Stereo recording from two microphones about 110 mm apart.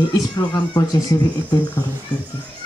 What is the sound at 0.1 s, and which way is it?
Speech, 35° left (ahead or behind).